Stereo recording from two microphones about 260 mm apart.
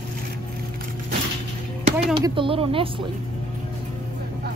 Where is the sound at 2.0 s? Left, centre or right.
Centre.